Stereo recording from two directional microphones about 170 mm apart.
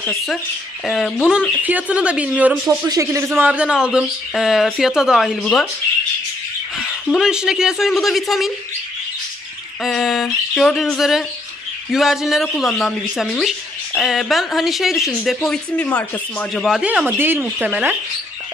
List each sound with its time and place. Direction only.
0.8 s speech: centre (ahead or behind)
7.1 s speech: 5° right (ahead or behind)
9.8 s speech: centre (ahead or behind)